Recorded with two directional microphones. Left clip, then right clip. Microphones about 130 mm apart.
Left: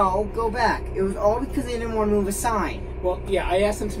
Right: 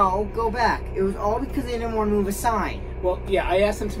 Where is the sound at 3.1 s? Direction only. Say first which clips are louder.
Right 1 dB; 30° right (ahead or behind).